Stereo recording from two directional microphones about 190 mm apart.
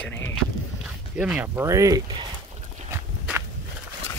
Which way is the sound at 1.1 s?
5° right (ahead or behind).